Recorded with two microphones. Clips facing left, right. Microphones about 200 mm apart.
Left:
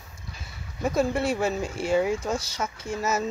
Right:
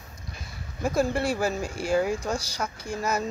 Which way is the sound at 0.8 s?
Centre (ahead or behind).